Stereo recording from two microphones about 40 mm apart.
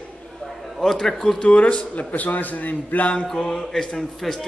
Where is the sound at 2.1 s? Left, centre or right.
Left.